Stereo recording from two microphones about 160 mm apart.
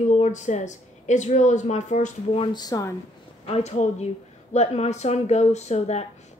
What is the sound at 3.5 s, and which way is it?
Speech, 45° left (ahead or behind).